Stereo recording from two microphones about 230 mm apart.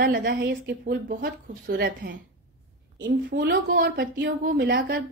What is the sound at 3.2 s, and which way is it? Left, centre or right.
A woman's voice, right.